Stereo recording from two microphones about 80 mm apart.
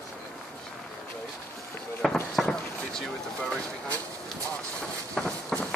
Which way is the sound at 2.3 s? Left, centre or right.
Centre.